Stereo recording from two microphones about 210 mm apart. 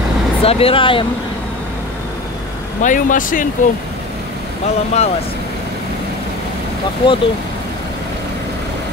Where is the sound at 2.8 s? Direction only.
40° left (ahead or behind).